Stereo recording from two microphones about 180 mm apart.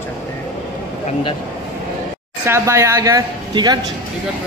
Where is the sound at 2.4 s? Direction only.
15° right (ahead or behind).